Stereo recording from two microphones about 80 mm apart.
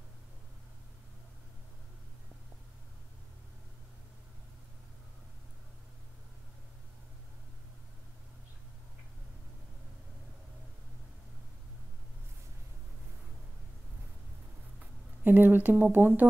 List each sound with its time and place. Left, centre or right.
15.2 s speech: right